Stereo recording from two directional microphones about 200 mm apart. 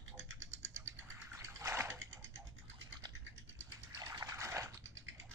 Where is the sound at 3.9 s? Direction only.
15° right (ahead or behind).